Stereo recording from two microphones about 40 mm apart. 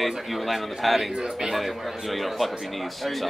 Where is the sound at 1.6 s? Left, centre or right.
Centre.